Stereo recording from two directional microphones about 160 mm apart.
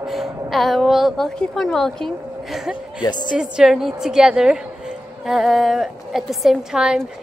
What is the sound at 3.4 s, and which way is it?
A woman's voice, 5° right (ahead or behind).